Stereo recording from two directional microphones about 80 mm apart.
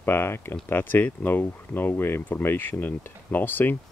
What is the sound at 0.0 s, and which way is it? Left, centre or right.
Speech, left.